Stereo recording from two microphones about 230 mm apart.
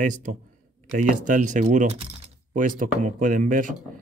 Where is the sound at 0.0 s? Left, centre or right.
Right.